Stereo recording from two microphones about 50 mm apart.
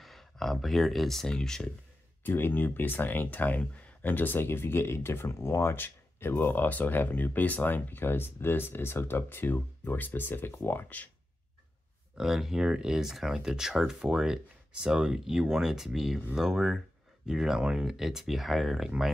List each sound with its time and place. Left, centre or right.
0.0 s speech: centre
2.2 s speech: left
12.2 s speech: centre